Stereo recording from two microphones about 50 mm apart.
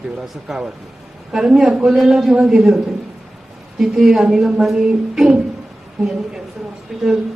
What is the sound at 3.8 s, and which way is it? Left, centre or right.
A man's voice, centre.